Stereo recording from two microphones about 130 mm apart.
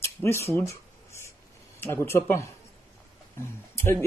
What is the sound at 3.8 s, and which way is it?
Speech, 20° left (ahead or behind).